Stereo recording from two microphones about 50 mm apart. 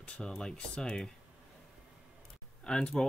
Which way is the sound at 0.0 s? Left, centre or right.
Centre.